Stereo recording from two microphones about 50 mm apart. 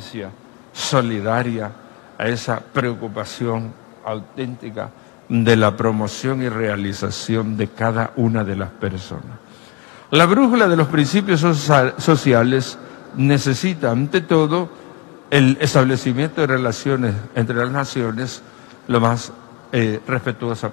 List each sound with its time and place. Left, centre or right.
0.2 s a man's voice: centre